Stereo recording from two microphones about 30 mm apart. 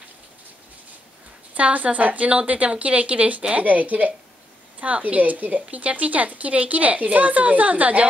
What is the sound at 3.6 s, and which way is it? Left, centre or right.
A woman's voice, right.